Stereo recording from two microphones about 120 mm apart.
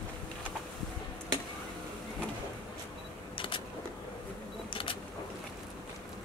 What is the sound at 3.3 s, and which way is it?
Vehicle, 45° left (ahead or behind).